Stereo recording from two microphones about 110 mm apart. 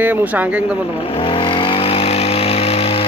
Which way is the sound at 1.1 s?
55° left (ahead or behind).